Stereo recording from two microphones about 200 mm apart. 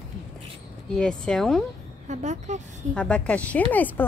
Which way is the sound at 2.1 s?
35° right (ahead or behind).